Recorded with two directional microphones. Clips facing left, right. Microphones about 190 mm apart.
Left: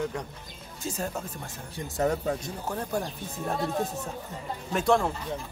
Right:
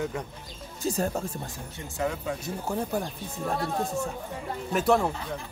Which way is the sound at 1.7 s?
40° left (ahead or behind).